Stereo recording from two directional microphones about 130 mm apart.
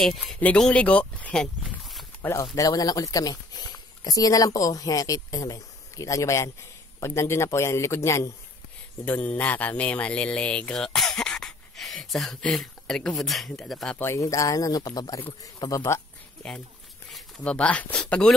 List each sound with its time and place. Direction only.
0.0 s speech: centre (ahead or behind)
1.6 s a sound: centre (ahead or behind)
2.5 s speech: 25° left (ahead or behind); by 13.9 s 5° left (ahead or behind)
13.9 s speech: 20° left (ahead or behind)
17.1 s speech: 10° left (ahead or behind)